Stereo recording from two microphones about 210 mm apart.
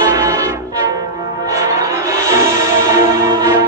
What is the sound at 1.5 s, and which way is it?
Church bell, 15° right (ahead or behind).